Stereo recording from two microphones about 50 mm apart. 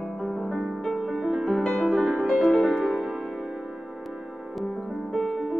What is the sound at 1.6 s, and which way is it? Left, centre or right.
Music, centre.